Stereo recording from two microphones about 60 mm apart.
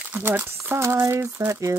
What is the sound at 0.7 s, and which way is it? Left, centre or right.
Speech, right.